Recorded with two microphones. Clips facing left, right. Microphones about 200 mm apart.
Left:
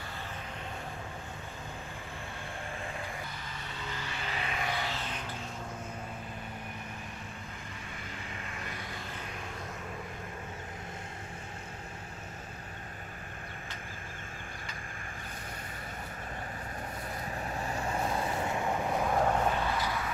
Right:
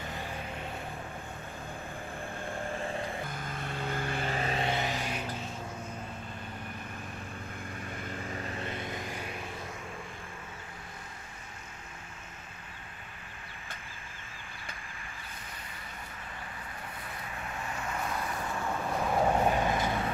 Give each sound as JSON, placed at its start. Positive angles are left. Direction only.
{"t": 3.3, "sound": "vehicle", "side_deg": -50}
{"t": 8.3, "sound": "vehicle", "side_deg": -35}
{"t": 17.3, "sound": "vehicle", "side_deg": 35}
{"t": 19.0, "sound": "vehicle", "side_deg": -5}
{"t": 19.4, "sound": "a sound", "side_deg": -20}